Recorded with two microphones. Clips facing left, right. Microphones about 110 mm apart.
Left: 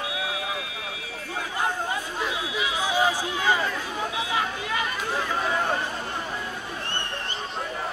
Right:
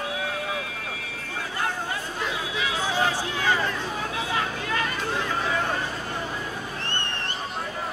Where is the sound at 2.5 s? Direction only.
15° left (ahead or behind).